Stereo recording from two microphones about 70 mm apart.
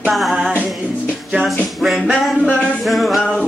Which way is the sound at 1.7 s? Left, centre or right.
Centre.